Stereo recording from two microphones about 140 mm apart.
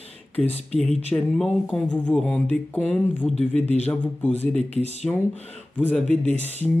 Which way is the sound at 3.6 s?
50° left (ahead or behind).